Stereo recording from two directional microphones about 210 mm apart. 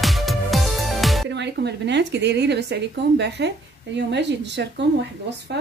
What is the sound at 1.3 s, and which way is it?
A woman's voice, 55° right (ahead or behind).